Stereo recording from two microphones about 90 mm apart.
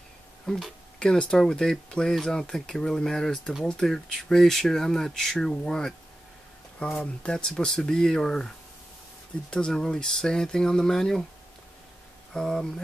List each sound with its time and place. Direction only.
0.5 s speech: 5° left (ahead or behind)
12.4 s speech: 5° left (ahead or behind)